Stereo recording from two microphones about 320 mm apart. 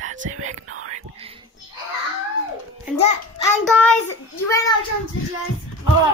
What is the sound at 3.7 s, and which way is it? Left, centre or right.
A child's voice, centre.